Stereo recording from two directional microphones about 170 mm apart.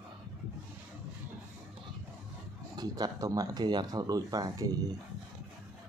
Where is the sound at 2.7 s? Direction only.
20° right (ahead or behind).